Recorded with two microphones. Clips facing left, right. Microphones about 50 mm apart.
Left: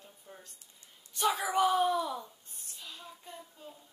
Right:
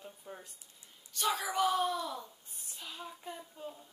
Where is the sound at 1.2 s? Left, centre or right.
Left; by 2.8 s centre.